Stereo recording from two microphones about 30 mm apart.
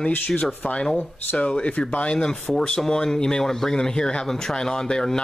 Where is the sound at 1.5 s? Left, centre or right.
Left.